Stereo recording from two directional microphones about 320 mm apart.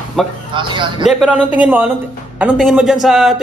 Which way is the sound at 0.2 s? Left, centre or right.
Centre.